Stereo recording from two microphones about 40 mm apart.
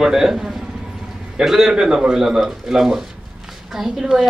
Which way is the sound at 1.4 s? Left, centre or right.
Centre.